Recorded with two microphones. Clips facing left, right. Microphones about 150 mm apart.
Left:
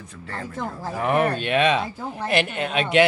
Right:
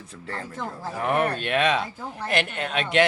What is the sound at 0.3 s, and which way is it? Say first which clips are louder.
Speech: left 2 dB; 10° left (ahead or behind).